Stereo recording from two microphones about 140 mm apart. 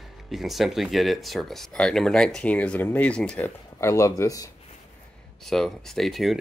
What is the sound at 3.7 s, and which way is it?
Speech, 20° left (ahead or behind).